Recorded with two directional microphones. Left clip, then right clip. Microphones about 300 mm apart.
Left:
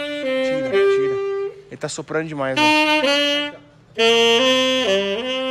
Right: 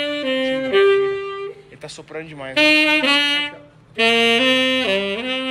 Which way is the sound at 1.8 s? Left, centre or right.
Left.